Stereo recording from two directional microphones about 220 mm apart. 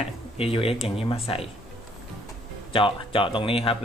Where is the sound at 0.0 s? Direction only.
25° left (ahead or behind).